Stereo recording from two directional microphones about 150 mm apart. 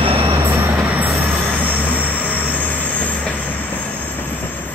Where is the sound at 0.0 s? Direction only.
40° right (ahead or behind).